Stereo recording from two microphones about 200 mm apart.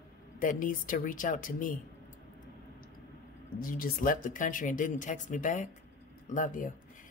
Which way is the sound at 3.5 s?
45° left (ahead or behind).